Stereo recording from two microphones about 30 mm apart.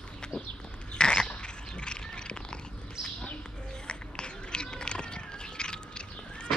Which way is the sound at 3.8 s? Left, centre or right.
Left.